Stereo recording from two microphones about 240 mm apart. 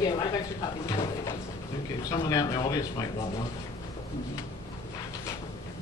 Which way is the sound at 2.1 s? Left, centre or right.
Centre.